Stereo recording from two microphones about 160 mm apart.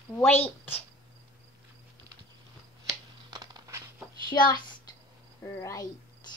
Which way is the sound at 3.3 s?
25° right (ahead or behind).